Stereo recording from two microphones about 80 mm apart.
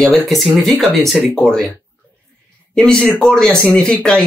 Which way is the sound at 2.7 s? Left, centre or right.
Centre.